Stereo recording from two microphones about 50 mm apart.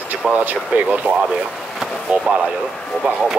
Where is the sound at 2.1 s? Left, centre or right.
Right.